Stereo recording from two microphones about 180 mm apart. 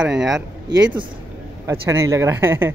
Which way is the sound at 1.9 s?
15° right (ahead or behind).